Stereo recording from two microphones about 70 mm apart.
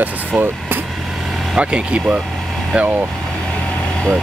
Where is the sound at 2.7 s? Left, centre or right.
Right.